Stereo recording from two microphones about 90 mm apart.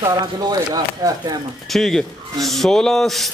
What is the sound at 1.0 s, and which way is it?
Speech, 45° right (ahead or behind).